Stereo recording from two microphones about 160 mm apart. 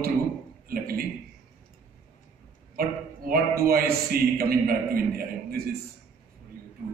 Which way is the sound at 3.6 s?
70° right (ahead or behind).